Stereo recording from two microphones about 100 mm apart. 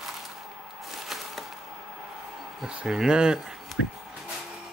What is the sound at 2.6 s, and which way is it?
Speech, 5° right (ahead or behind).